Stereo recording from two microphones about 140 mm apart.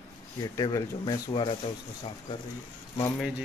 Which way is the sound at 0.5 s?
25° left (ahead or behind).